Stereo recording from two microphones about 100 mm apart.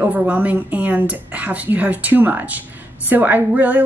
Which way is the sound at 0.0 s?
15° right (ahead or behind).